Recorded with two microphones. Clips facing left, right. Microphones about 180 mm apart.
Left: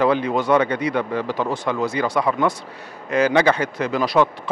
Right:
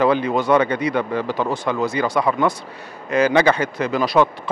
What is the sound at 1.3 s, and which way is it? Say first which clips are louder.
Speech: right 1 dB; 30° right (ahead or behind).